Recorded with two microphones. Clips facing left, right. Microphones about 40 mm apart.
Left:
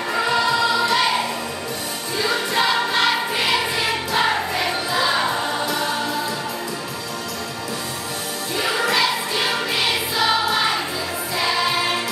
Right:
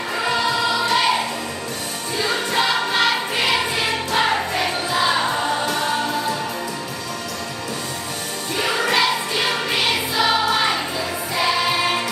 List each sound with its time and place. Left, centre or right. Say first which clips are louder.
0.1 s music: left 2 dB; centre
2.1 s music: even; centre
8.5 s music: right 1 dB; centre
11.3 s choir: right 1 dB; centre